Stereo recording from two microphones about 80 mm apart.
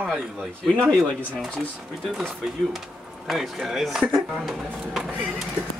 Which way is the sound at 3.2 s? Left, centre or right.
Centre.